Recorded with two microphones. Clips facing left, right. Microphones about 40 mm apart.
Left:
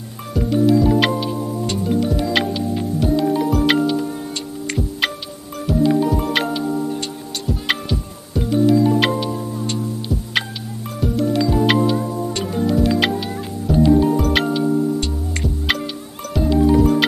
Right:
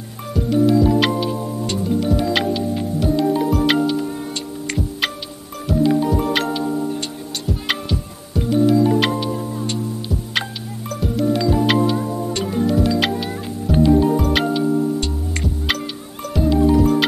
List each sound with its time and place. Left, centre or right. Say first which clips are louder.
0.3 s music: even; centre
11.0 s music: left 1 dB; centre